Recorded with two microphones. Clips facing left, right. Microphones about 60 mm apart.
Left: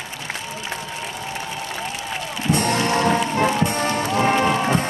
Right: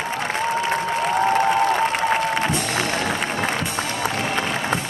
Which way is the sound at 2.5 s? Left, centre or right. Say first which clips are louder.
Left 3 dB; left.